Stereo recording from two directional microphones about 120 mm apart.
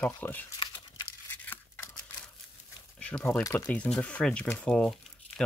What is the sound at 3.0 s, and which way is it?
Speech, 10° left (ahead or behind).